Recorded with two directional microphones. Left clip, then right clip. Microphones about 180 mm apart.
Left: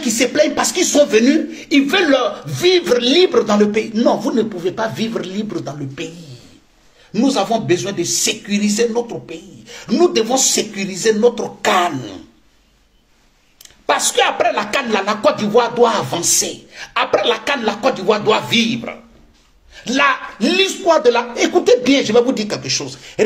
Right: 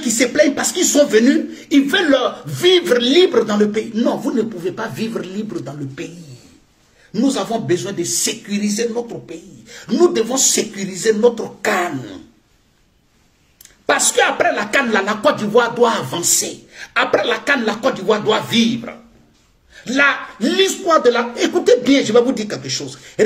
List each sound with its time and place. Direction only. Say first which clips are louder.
0.0 s speech: even; 20° right (ahead or behind)
7.1 s a man's voice: left 3 dB; 20° right (ahead or behind)
13.6 s a sound: even; 20° right (ahead or behind)
14.4 s speech: right 1 dB; 20° right (ahead or behind)
19.7 s speech: even; 15° right (ahead or behind)